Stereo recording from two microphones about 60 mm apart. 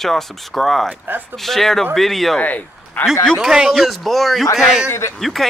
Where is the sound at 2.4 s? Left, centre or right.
Left.